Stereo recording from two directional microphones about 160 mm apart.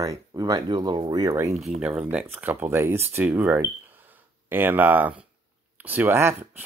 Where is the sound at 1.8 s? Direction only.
5° right (ahead or behind).